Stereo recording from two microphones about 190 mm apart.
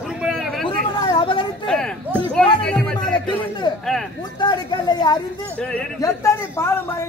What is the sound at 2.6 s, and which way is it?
Music, 5° left (ahead or behind).